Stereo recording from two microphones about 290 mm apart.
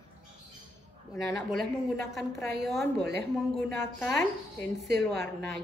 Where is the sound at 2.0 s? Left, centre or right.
Centre.